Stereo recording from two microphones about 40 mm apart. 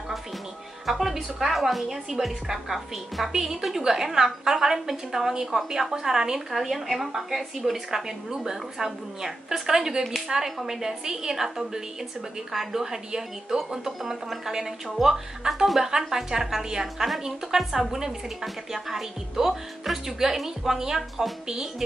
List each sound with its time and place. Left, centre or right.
0.8 s a woman's voice: centre